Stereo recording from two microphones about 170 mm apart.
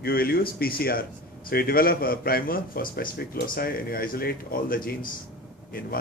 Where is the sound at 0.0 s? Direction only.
60° left (ahead or behind).